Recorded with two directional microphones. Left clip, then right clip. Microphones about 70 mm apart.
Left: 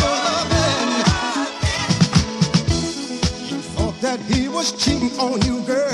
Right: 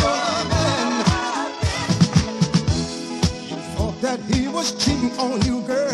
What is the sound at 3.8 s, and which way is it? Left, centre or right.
Music, right.